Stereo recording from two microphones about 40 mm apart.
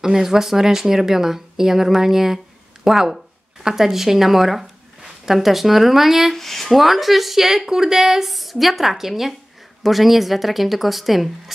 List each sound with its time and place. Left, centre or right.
0.0 s speech: centre
6.3 s speech: centre